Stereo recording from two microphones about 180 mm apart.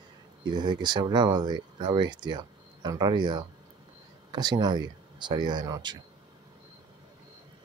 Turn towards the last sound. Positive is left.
turn(degrees=-25)  # may be behind; listen again after turning